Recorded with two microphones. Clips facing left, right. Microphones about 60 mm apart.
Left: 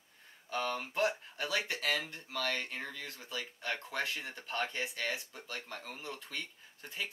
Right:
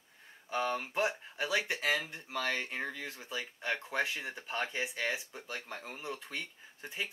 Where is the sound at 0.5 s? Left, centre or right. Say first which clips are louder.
Right 2 dB; centre.